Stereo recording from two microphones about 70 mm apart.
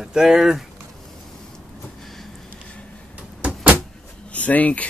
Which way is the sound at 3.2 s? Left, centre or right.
Centre.